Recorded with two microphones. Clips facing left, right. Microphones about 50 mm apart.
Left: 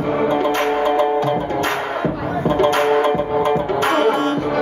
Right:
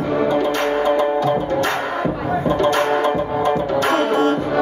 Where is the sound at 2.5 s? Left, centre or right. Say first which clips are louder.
Left 3 dB; left.